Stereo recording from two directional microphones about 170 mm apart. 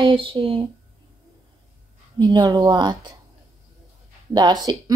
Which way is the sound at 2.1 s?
25° right (ahead or behind).